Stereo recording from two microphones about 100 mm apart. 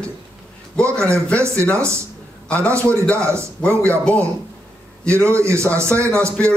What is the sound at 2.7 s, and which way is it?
Speech, 30° right (ahead or behind).